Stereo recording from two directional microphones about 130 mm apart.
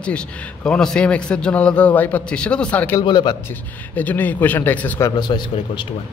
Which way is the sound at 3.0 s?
35° left (ahead or behind).